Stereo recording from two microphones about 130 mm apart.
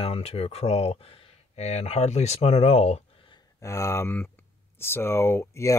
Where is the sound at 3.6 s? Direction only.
20° left (ahead or behind).